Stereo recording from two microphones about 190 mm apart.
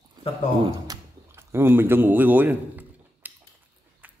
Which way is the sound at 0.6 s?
15° right (ahead or behind).